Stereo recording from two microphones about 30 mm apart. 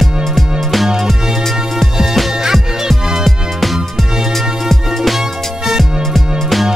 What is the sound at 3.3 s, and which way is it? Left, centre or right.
Music, centre.